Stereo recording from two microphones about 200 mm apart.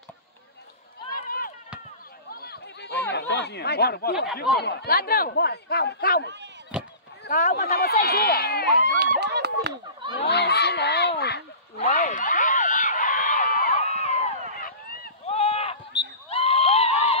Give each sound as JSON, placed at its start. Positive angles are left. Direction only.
{"t": 1.1, "sound": "run", "side_deg": 45}
{"t": 2.2, "sound": "chatter", "side_deg": 50}
{"t": 4.6, "sound": "speech", "side_deg": 55}
{"t": 6.7, "sound": "chop", "side_deg": -5}
{"t": 7.2, "sound": "speech", "side_deg": 40}
{"t": 7.5, "sound": "speech", "side_deg": 50}
{"t": 8.8, "sound": "a sound", "side_deg": -50}
{"t": 10.1, "sound": "speech", "side_deg": 55}
{"t": 11.8, "sound": "a sound", "side_deg": 40}
{"t": 15.2, "sound": "rowboat", "side_deg": 30}
{"t": 16.0, "sound": "a sound", "side_deg": 30}